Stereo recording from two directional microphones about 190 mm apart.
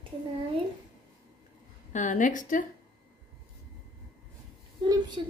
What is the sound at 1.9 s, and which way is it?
Speech, 40° left (ahead or behind).